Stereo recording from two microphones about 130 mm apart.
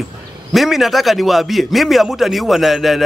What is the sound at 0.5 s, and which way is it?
A man's voice, centre (ahead or behind).